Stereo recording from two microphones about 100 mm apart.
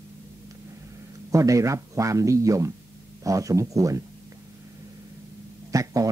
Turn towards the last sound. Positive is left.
turn(degrees=-35)  # may be behind; listen again after turning